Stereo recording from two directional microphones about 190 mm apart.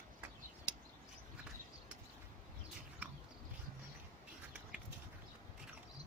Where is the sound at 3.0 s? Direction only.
10° right (ahead or behind).